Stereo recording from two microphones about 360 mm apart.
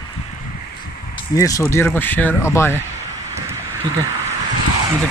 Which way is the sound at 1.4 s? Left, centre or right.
Centre.